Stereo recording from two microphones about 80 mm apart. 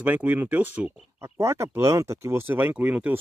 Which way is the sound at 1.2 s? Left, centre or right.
Right.